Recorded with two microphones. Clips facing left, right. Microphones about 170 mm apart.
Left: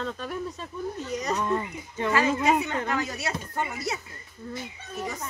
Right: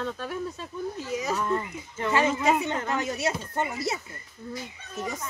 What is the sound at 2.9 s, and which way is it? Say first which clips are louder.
Speech: right 2 dB; 20° right (ahead or behind).